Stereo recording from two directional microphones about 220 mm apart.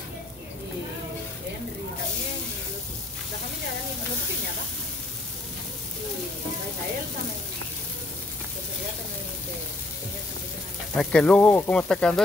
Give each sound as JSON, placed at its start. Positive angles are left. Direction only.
{"t": 11.0, "sound": "speech", "side_deg": 5}